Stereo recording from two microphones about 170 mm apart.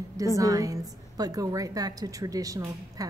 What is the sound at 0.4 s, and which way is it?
A woman's voice, 20° right (ahead or behind).